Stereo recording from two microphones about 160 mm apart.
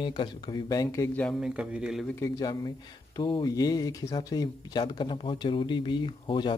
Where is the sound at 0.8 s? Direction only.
15° left (ahead or behind).